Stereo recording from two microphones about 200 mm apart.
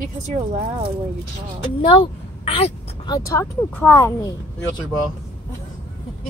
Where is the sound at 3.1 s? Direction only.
15° left (ahead or behind).